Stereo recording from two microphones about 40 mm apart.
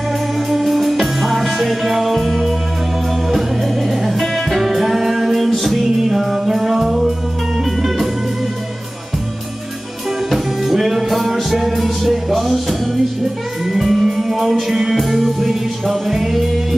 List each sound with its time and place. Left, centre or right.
0.5 s music: centre
10.3 s music: centre